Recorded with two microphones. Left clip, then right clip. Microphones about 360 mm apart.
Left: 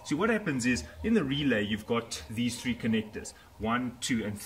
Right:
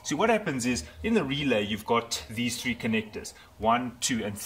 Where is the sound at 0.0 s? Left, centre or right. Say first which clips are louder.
Right 4 dB; centre.